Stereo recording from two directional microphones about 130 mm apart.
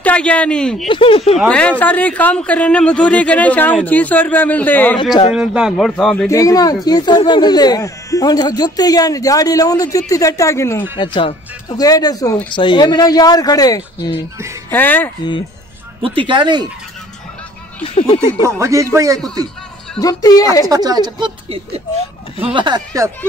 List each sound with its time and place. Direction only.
0.0 s speech: 10° left (ahead or behind)
0.8 s speech: 40° left (ahead or behind)
1.5 s speech: 10° left (ahead or behind)
5.3 s speech: 5° right (ahead or behind)
6.2 s speech: 25° left (ahead or behind)
11.0 s speech: 35° left (ahead or behind)
14.7 s speech: 15° left (ahead or behind)
16.2 s speech: 40° right (ahead or behind)
17.8 s speech: 45° left (ahead or behind)
18.4 s speech: 25° right (ahead or behind)
20.0 s speech: 30° left (ahead or behind)
20.6 s speech: 30° right (ahead or behind)
22.4 s speech: 40° right (ahead or behind)